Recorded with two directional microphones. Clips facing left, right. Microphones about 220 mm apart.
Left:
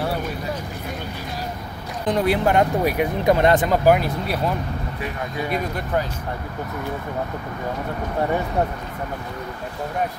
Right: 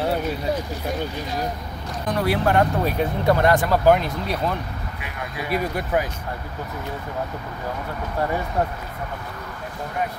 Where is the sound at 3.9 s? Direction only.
5° left (ahead or behind).